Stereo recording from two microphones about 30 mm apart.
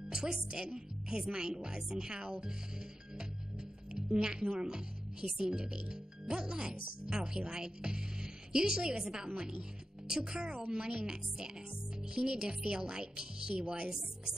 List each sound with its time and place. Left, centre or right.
0.1 s speech: right
3.9 s speech: right